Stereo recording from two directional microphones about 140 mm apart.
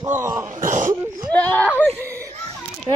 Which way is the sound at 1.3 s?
10° left (ahead or behind).